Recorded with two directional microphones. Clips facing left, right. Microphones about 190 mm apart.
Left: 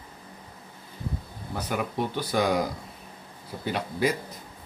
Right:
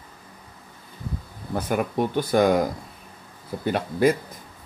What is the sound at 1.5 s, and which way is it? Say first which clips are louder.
Speech: right 5 dB; 50° right (ahead or behind).